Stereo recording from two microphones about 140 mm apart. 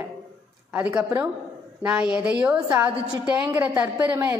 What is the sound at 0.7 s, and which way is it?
A woman's voice, 10° right (ahead or behind).